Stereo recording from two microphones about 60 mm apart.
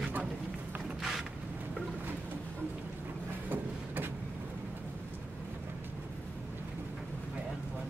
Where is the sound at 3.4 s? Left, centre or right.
Right.